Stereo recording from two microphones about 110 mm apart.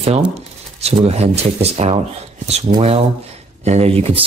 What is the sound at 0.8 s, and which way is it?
Speech, 70° right (ahead or behind).